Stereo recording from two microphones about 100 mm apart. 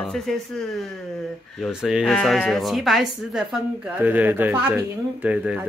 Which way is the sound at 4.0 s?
20° right (ahead or behind).